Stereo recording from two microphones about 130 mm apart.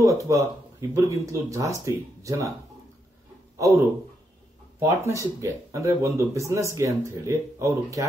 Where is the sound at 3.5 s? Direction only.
25° right (ahead or behind).